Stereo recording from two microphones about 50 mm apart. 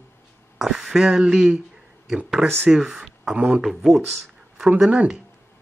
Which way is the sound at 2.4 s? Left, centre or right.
Centre.